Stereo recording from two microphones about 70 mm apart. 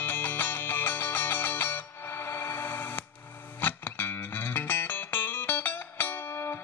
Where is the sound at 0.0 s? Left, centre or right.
Left.